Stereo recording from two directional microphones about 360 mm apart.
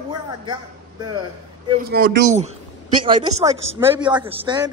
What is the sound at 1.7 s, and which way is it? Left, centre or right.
A woman's voice, right.